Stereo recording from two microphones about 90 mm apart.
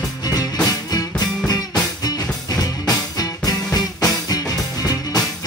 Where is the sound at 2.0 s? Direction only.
45° left (ahead or behind).